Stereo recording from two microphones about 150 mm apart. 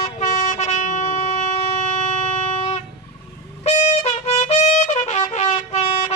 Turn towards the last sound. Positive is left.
turn(degrees=45)  # may be behind; listen again after turning